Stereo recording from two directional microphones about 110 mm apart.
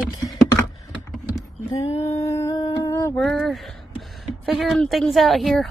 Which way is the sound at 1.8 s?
70° left (ahead or behind).